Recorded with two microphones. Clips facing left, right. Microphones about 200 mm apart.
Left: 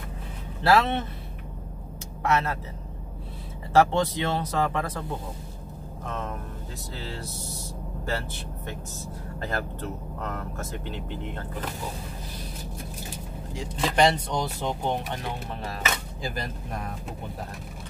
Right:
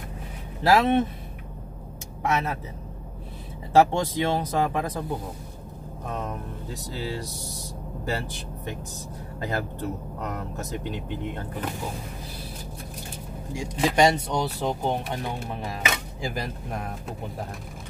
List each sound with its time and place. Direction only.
0.7 s speech: 15° right (ahead or behind)
2.2 s speech: 15° right (ahead or behind)
3.7 s speech: 15° right (ahead or behind)
9.4 s speech: 15° right (ahead or behind)
13.5 s speech: 15° right (ahead or behind)